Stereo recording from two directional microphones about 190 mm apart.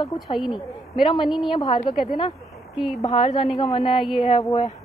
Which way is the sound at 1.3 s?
Centre (ahead or behind).